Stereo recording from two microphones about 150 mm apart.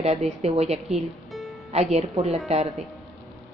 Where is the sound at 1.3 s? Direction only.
Centre (ahead or behind).